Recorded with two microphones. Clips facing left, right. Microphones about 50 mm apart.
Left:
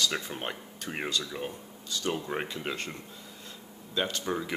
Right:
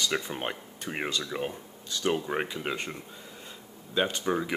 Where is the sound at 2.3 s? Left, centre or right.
Centre.